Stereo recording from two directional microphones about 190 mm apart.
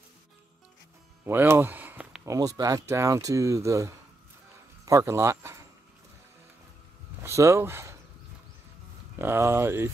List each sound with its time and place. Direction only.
1.2 s speech: 10° right (ahead or behind)
7.2 s speech: 15° right (ahead or behind)
9.2 s speech: 15° right (ahead or behind)